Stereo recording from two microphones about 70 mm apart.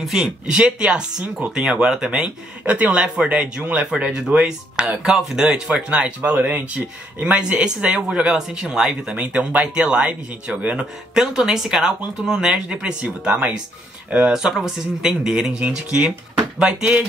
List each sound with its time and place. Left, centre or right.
0.0 s speech: centre